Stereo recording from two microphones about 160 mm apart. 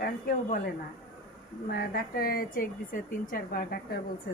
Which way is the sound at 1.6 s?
70° left (ahead or behind).